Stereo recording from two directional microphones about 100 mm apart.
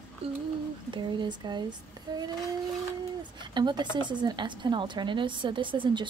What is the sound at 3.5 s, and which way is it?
A woman's voice, 50° right (ahead or behind).